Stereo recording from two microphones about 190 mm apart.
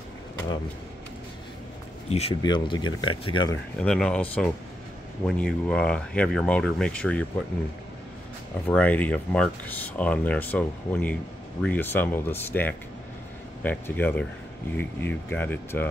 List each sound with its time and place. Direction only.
2.0 s speech: 30° left (ahead or behind)
3.8 s speech: 5° left (ahead or behind)
8.6 s speech: 10° left (ahead or behind)